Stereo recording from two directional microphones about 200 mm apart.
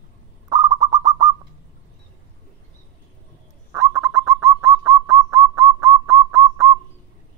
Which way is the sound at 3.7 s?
15° right (ahead or behind).